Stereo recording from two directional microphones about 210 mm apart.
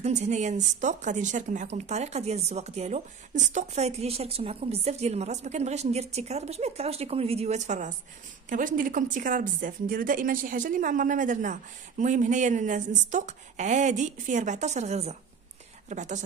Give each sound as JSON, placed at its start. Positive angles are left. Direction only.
{"t": 0.0, "sound": "speech", "side_deg": -35}